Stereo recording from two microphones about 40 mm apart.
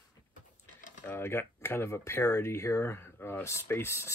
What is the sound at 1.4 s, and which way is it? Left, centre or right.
Speech, left.